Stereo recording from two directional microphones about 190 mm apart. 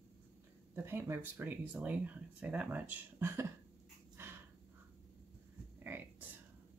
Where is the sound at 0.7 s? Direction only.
15° right (ahead or behind).